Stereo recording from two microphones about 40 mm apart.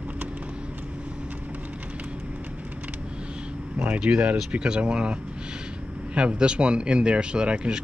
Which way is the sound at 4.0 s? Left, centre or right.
Right.